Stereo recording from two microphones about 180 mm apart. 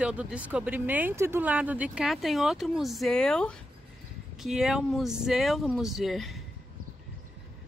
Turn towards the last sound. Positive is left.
turn(degrees=0)  # may be behind; listen again after turning